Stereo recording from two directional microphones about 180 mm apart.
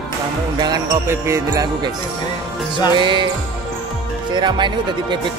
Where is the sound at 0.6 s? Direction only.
20° right (ahead or behind).